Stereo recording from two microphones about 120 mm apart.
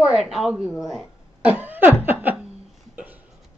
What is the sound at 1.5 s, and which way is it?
Snicker, 15° right (ahead or behind).